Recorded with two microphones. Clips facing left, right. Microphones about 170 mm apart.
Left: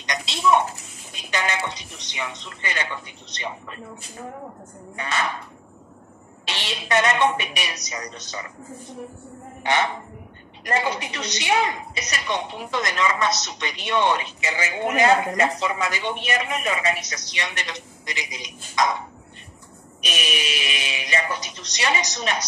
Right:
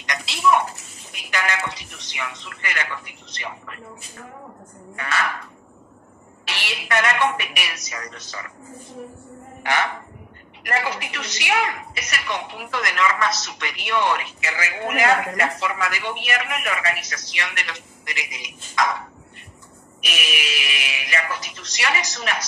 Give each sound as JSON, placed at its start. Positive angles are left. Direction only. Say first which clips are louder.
{"t": 0.0, "sound": "a woman's voice", "louder": "right 1 dB", "side_deg": 20}
{"t": 4.9, "sound": "a woman's voice", "louder": "right 1 dB", "side_deg": 20}
{"t": 9.6, "sound": "a woman's voice", "louder": "left 1 dB", "side_deg": 20}